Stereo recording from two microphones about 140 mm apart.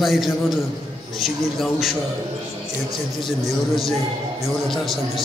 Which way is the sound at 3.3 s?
Centre (ahead or behind).